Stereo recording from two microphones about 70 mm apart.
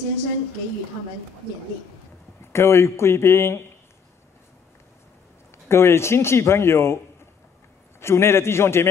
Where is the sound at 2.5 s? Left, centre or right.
Left.